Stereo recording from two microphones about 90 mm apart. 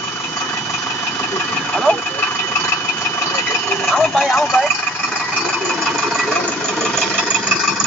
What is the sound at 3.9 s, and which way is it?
Speech, 5° left (ahead or behind).